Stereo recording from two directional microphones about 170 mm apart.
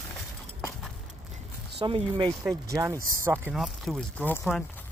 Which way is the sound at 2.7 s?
15° right (ahead or behind).